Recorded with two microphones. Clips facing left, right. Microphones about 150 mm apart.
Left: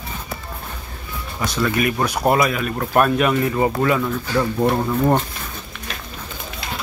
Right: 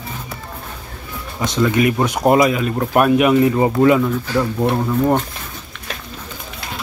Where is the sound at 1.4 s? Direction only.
20° right (ahead or behind).